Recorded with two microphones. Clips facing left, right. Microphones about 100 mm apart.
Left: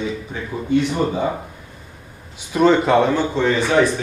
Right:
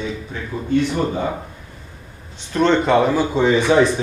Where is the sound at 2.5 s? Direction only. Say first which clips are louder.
Left 1 dB; 5° left (ahead or behind); by 3.9 s 15° right (ahead or behind).